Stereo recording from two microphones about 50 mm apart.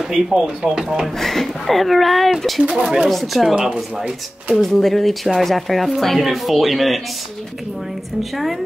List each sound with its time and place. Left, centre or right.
0.1 s speech: centre
0.8 s speech: centre
2.7 s speech: centre
3.1 s speech: centre
3.5 s speech: centre
4.6 s speech: centre
8.2 s speech: centre